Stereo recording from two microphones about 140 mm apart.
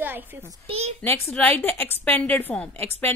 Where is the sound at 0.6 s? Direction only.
50° right (ahead or behind).